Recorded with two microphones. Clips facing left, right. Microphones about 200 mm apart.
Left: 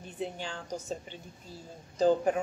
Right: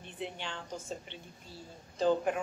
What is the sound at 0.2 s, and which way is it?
Speech, 40° left (ahead or behind).